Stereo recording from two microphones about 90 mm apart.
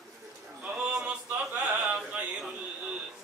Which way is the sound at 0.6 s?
20° right (ahead or behind).